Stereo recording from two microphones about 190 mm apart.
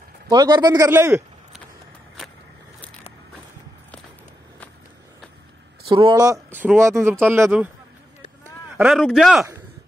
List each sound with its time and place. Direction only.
0.3 s speech: 20° right (ahead or behind)
5.9 s speech: 25° right (ahead or behind); by 7.7 s 10° right (ahead or behind)
8.7 s speech: centre (ahead or behind)